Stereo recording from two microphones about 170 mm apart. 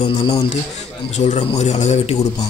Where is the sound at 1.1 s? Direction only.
40° left (ahead or behind).